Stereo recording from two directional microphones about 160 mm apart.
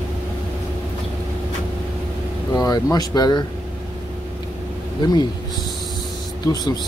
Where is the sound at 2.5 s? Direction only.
25° left (ahead or behind).